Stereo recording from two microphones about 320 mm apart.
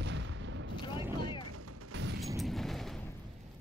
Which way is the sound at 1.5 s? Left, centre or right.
Right.